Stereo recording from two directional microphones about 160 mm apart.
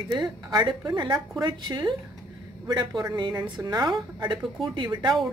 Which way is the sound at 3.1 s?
25° right (ahead or behind).